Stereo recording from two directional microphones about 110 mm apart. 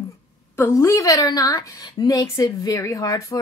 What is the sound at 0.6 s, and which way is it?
Speech, 25° left (ahead or behind).